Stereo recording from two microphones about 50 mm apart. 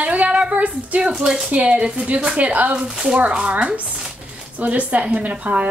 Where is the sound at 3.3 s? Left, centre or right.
Right.